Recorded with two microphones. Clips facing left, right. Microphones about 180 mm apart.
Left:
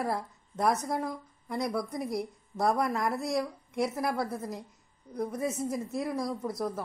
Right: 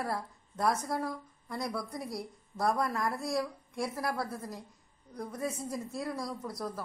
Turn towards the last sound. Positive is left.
turn(degrees=20)  # may be behind; listen again after turning